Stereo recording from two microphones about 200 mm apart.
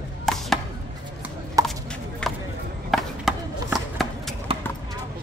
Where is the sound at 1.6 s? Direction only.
15° right (ahead or behind).